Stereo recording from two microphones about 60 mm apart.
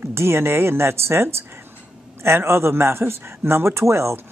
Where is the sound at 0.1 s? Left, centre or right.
Right.